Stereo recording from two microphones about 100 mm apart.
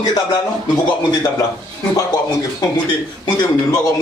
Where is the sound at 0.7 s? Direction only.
40° left (ahead or behind).